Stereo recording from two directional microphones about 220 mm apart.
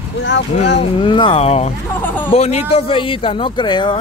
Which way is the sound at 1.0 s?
20° left (ahead or behind).